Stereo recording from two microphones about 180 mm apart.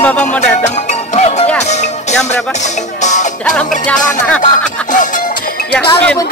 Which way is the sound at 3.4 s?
5° left (ahead or behind).